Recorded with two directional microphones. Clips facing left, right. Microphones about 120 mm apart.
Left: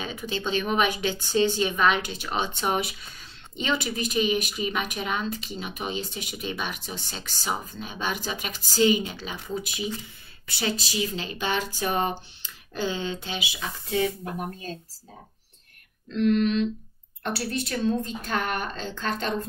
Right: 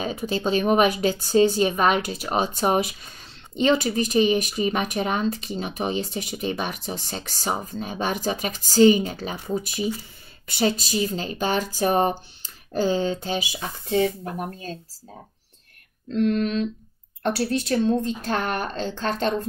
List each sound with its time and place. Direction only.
0.0 s speech: 40° right (ahead or behind)
16.1 s speech: 45° right (ahead or behind)